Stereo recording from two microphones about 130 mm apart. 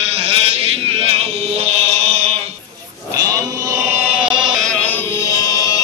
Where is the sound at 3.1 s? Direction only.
30° right (ahead or behind).